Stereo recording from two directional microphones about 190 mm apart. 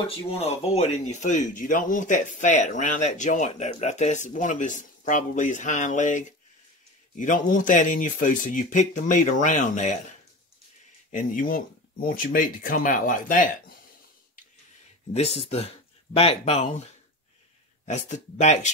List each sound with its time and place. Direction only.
0.1 s speech: 30° left (ahead or behind)
11.1 s speech: 45° left (ahead or behind)
15.1 s speech: 30° left (ahead or behind)